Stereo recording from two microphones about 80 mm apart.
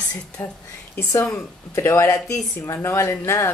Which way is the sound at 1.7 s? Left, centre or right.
Left.